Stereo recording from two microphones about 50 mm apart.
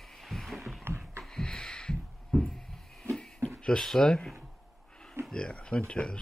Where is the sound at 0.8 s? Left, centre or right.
Right.